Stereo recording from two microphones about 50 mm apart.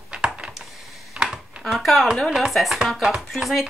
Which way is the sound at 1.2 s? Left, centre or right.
Centre.